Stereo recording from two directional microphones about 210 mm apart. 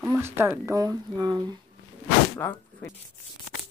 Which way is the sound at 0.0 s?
10° right (ahead or behind).